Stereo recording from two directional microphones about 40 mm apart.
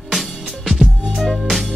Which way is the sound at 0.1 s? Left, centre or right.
Centre.